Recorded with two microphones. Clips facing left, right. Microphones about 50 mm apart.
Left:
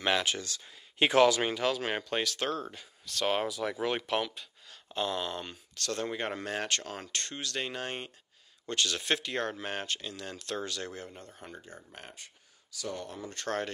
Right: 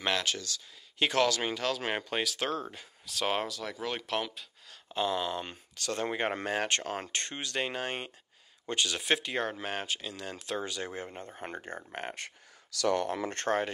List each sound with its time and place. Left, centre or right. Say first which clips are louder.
0.0 s speech: left 2 dB; centre
0.4 s speech: even; left; by 1.8 s centre
1.8 s speech: even; centre
3.4 s speech: left 4 dB; centre
4.0 s speech: left 2 dB; centre
5.4 s speech: even; centre
6.0 s speech: right 3 dB; right
11.0 s speech: right 4 dB; right
11.4 s speech: right 9 dB; right
12.7 s speech: right 10 dB; right